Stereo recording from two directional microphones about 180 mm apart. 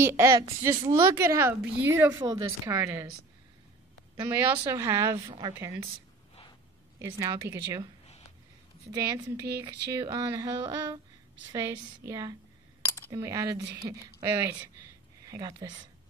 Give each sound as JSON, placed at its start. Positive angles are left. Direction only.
{"t": 0.0, "sound": "speech", "side_deg": -15}
{"t": 4.2, "sound": "speech", "side_deg": -15}
{"t": 7.0, "sound": "speech", "side_deg": -15}
{"t": 8.9, "sound": "speech", "side_deg": -20}
{"t": 12.8, "sound": "a sound", "side_deg": 15}
{"t": 13.1, "sound": "speech", "side_deg": -15}